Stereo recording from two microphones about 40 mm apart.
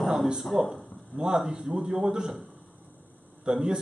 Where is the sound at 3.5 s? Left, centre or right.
Right.